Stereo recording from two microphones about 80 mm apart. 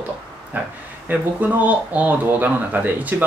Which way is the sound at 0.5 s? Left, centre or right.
Right.